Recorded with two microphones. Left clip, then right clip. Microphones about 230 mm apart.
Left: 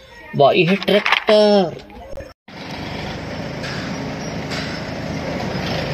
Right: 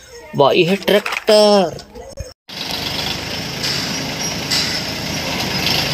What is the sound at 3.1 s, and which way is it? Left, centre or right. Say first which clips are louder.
Vehicle: right 4 dB; centre.